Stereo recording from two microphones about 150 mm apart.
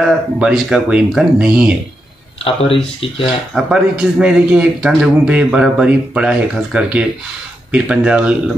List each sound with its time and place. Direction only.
0.0 s speech: 5° right (ahead or behind)
2.4 s speech: 35° left (ahead or behind)
3.5 s a man's voice: 5° right (ahead or behind)